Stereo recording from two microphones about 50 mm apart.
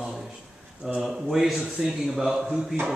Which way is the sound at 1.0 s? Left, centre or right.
Centre.